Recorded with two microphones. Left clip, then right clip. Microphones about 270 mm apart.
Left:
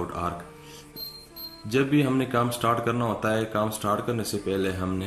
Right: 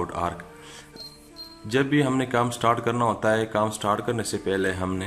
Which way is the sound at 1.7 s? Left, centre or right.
Right.